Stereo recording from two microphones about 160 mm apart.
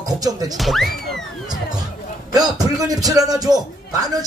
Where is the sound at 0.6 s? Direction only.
Centre (ahead or behind).